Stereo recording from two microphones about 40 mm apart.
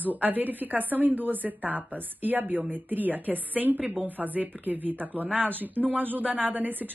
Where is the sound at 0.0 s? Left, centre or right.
Right.